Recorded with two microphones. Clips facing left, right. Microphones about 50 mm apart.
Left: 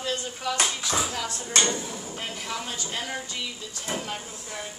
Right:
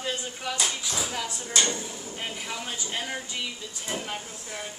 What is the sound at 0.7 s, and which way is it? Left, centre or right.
Speech, left.